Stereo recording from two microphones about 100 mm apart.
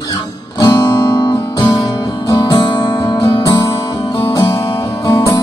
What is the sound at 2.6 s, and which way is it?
Music, 50° left (ahead or behind).